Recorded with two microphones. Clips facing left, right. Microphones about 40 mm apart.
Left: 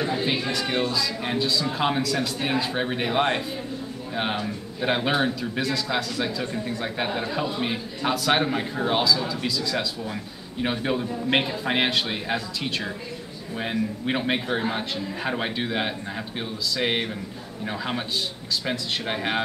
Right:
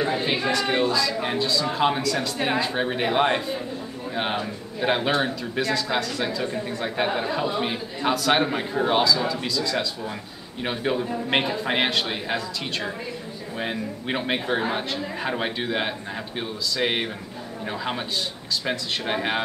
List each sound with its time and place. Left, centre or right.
0.5 s a man's voice: centre